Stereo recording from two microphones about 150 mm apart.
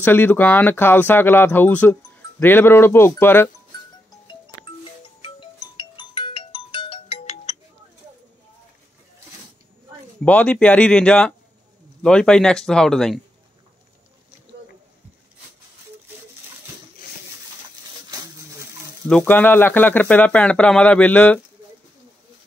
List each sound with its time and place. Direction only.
0.0 s speech: 10° left (ahead or behind)
5.2 s music: 35° left (ahead or behind)
10.2 s speech: 10° left (ahead or behind)
19.0 s speech: 10° left (ahead or behind)